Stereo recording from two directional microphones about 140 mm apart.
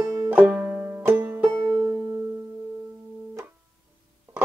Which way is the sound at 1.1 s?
10° right (ahead or behind).